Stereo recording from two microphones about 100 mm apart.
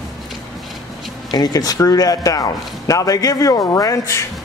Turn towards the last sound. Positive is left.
turn(degrees=35)  # may be behind; listen again after turning